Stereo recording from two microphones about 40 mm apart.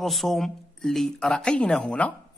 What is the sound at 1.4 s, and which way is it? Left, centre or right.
Speech, left.